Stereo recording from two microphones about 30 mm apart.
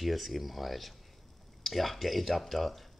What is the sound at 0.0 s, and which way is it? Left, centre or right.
Speech, centre.